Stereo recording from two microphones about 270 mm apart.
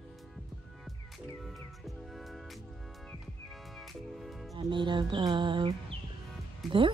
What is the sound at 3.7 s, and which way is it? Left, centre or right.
Music, centre.